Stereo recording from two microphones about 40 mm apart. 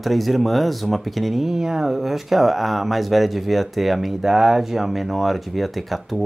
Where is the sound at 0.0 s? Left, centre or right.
Centre.